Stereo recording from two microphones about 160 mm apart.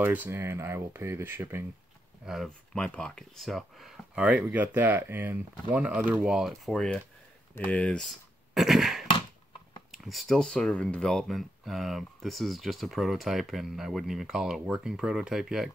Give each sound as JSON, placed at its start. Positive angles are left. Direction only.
{"t": 0.0, "sound": "speech", "side_deg": -10}
{"t": 2.2, "sound": "speech", "side_deg": 0}
{"t": 8.5, "sound": "a sound", "side_deg": 0}
{"t": 9.8, "sound": "speech", "side_deg": 0}